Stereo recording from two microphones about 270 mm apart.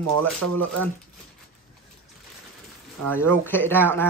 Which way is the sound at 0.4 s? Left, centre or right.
Right.